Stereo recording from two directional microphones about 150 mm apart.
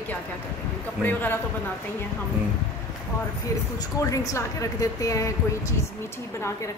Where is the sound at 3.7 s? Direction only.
20° left (ahead or behind).